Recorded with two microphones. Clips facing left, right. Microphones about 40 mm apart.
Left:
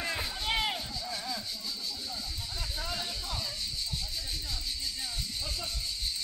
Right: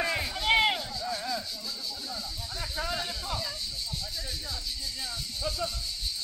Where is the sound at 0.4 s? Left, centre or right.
Right.